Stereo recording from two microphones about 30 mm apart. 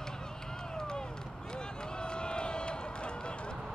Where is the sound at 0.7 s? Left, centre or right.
Left.